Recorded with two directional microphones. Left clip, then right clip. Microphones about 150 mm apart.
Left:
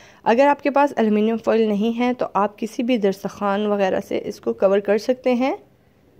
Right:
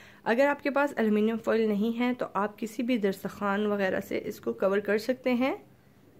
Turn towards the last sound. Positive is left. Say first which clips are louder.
# left 8 dB
turn(degrees=30)  # may be behind; listen again after turning